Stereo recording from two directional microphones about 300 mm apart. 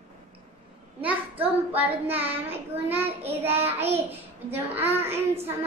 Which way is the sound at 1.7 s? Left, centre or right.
Centre.